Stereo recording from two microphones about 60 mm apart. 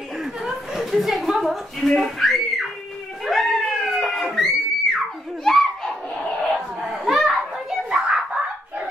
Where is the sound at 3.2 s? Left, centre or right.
Centre.